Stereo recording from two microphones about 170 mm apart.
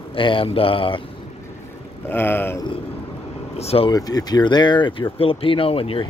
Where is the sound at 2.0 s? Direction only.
10° left (ahead or behind).